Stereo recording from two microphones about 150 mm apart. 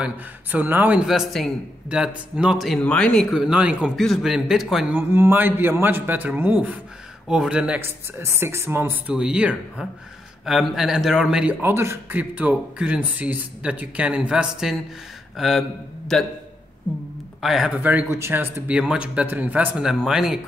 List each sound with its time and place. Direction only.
0.0 s speech: 10° right (ahead or behind)
17.4 s speech: centre (ahead or behind)